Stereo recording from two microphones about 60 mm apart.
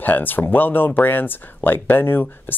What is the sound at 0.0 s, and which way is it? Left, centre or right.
Speech, left.